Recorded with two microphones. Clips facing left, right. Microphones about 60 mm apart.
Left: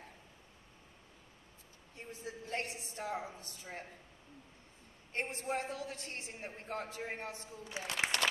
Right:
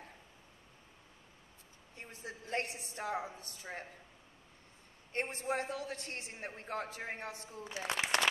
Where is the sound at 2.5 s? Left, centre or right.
Right.